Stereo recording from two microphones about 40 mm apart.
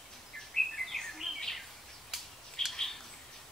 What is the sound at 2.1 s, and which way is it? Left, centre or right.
Bird, centre.